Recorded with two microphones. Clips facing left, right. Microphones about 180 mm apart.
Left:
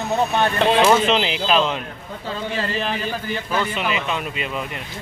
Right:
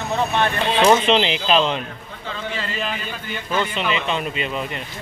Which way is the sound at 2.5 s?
40° left (ahead or behind).